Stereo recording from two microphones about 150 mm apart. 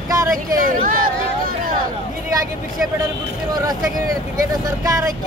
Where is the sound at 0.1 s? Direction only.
25° right (ahead or behind).